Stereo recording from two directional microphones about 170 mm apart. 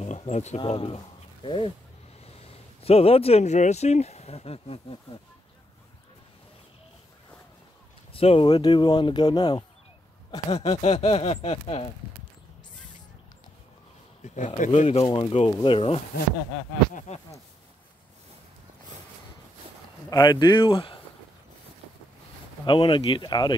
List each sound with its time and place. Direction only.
0.0 s speech: 40° left (ahead or behind)
2.8 s speech: 35° left (ahead or behind)
8.1 s speech: 35° left (ahead or behind)
10.5 s speech: 35° left (ahead or behind)
14.2 s speech: 45° left (ahead or behind)
17.1 s speech: 40° left (ahead or behind)
20.1 s speech: 25° left (ahead or behind)
22.7 s speech: 30° left (ahead or behind)